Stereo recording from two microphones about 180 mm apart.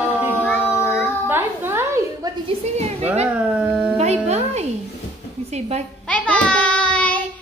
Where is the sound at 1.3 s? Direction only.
15° right (ahead or behind).